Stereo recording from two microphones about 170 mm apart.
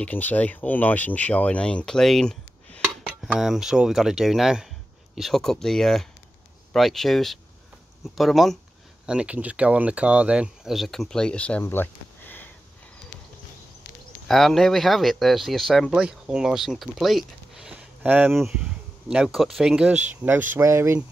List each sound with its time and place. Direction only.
0.0 s speech: 10° left (ahead or behind)
14.2 s speech: centre (ahead or behind); by 21.0 s 15° right (ahead or behind)